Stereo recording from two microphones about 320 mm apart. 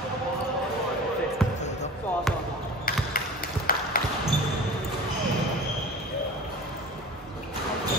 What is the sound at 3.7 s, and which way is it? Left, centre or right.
Basketball bounce, left.